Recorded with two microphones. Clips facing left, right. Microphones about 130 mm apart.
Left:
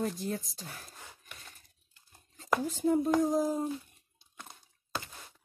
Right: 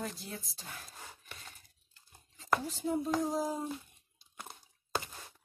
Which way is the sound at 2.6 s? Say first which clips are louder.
Left 6 dB; 50° left (ahead or behind).